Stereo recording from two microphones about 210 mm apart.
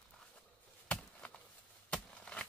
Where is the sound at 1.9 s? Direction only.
5° left (ahead or behind).